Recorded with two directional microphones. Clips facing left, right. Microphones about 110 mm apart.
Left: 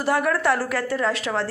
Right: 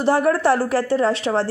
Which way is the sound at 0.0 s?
30° right (ahead or behind).